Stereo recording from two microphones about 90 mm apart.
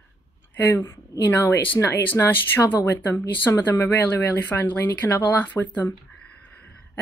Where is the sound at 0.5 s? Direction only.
20° left (ahead or behind).